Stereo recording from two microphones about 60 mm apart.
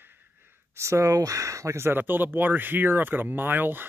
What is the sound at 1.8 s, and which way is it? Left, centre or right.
Speech, right.